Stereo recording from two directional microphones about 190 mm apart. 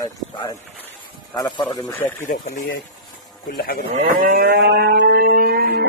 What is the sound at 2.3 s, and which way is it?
Speech, 45° left (ahead or behind).